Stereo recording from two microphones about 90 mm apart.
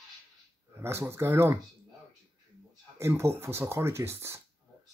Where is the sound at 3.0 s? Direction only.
30° right (ahead or behind).